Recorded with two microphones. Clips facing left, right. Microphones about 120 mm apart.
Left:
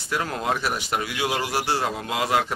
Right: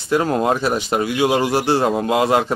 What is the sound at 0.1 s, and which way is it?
Speech, 30° right (ahead or behind).